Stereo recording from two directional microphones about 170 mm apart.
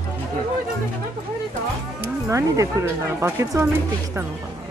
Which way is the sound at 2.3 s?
15° right (ahead or behind).